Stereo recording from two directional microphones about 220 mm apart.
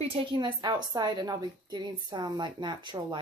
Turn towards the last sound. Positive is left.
turn(degrees=-20)  # may be behind; listen again after turning